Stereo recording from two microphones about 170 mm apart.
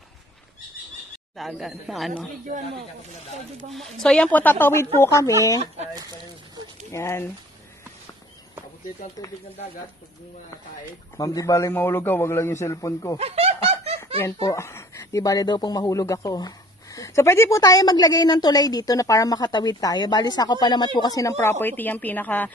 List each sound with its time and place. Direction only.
1.3 s speech: centre (ahead or behind)
4.0 s a man's voice: 5° left (ahead or behind)
5.9 s speech: 20° right (ahead or behind)
6.9 s a man's voice: 15° left (ahead or behind)
11.1 s a man's voice: 20° left (ahead or behind)
13.2 s snicker: 35° right (ahead or behind)
14.2 s speech: 15° left (ahead or behind)